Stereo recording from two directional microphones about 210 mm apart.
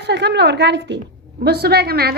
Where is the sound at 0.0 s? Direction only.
55° right (ahead or behind).